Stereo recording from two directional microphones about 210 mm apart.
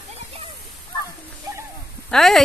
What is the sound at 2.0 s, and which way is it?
Speech, centre (ahead or behind).